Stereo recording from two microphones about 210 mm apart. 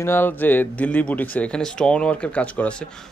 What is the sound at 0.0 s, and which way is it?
Speech, 10° left (ahead or behind).